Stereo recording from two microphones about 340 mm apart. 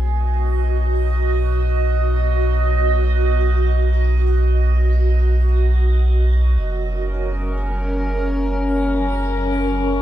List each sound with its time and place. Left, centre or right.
1.2 s music: right
7.9 s music: centre